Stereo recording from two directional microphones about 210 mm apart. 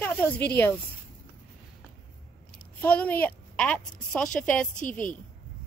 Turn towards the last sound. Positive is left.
turn(degrees=40)  # may be behind; listen again after turning